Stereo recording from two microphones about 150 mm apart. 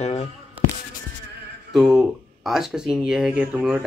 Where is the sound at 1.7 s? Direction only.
Centre (ahead or behind).